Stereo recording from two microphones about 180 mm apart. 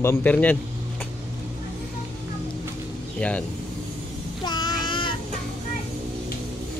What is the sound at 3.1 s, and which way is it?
Speech, 5° left (ahead or behind).